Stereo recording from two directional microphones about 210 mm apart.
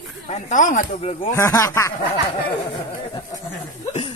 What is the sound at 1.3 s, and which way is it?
Speech, 15° left (ahead or behind).